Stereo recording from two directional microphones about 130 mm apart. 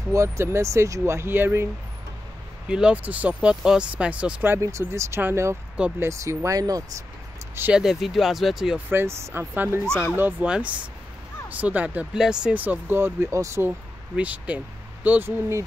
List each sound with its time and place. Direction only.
0.1 s speech: 20° right (ahead or behind)
2.7 s speech: 10° right (ahead or behind); by 6.8 s 30° right (ahead or behind)
7.7 s speech: centre (ahead or behind)
8.8 s speech: 20° right (ahead or behind)